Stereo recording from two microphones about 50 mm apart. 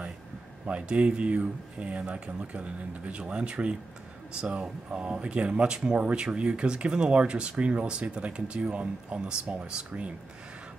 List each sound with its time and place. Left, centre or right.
0.7 s speech: right